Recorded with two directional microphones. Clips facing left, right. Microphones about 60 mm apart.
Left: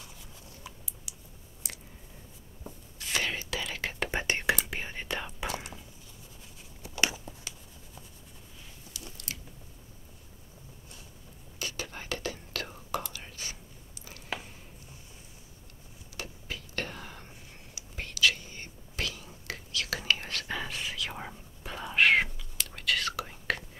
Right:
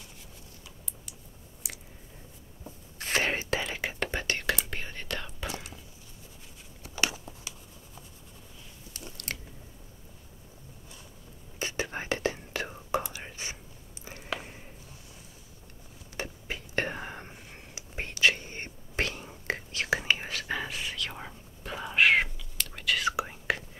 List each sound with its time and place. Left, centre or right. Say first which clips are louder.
1.1 s a sound: even; centre
3.0 s whispering: right 4 dB; right
4.1 s whispering: left 5 dB; left
8.9 s biting: right 4 dB; right
11.6 s whispering: right 5 dB; right
14.0 s a sound: right 2 dB; right
16.2 s whispering: right 4 dB; right
20.2 s whispering: right 2 dB; centre
23.0 s whispering: right 6 dB; centre